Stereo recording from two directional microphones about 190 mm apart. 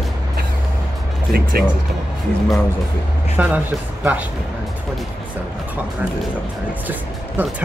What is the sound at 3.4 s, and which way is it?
Speech, 5° right (ahead or behind).